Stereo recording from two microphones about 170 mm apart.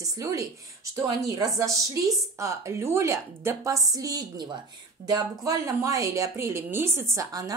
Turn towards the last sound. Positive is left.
turn(degrees=-20)  # may be behind; listen again after turning